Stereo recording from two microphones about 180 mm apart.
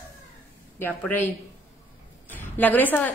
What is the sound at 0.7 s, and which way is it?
A woman's voice, 10° left (ahead or behind).